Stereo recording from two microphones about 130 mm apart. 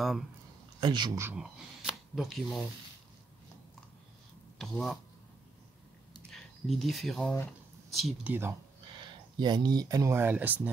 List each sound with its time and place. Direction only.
0.7 s a man's voice: 35° right (ahead or behind)
1.3 s speech: 5° right (ahead or behind)
4.6 s speech: 5° left (ahead or behind)
6.3 s speech: centre (ahead or behind)
8.3 s speech: 15° right (ahead or behind)
9.0 s speech: 35° right (ahead or behind); by 10.7 s 10° right (ahead or behind)